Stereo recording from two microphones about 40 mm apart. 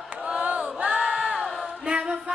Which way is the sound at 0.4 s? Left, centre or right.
Right.